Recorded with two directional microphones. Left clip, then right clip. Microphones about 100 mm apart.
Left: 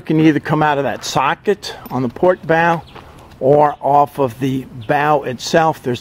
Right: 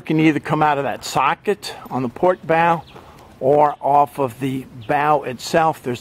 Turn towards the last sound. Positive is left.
turn(degrees=10)  # may be behind; listen again after turning